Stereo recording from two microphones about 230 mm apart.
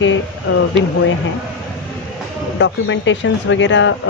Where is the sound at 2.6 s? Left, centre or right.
Left.